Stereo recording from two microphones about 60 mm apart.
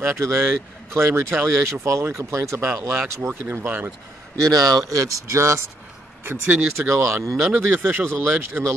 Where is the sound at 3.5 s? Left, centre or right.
Right.